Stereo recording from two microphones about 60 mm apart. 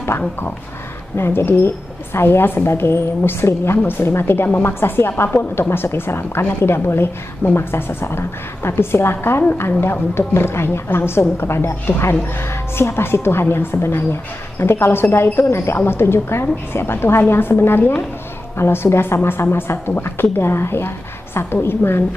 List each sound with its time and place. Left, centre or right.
1.1 s a woman's voice: left